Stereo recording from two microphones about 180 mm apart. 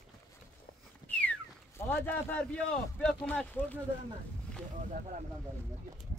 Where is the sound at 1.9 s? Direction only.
10° left (ahead or behind).